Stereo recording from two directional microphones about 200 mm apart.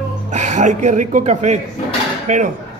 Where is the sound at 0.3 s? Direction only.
35° right (ahead or behind).